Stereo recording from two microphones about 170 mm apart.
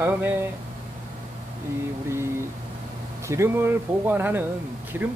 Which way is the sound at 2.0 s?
15° right (ahead or behind).